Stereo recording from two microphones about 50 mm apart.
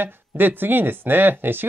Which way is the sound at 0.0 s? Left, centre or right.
Right.